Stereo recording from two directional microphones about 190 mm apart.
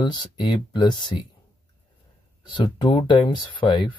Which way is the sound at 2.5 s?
25° left (ahead or behind).